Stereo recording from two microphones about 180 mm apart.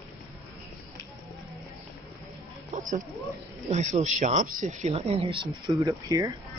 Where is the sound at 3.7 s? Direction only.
40° right (ahead or behind); by 6.3 s 20° right (ahead or behind).